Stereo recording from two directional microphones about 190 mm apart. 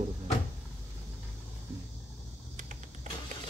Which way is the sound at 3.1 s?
40° right (ahead or behind).